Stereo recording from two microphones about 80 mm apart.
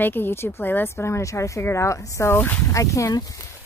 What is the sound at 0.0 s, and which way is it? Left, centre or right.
Speech, left.